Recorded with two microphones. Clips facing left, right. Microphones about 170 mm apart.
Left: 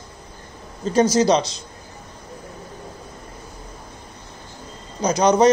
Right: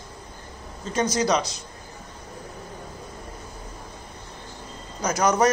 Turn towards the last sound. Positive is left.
turn(degrees=20)  # may be behind; listen again after turning